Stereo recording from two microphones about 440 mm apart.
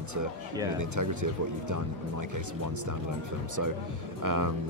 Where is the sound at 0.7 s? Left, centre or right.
Right.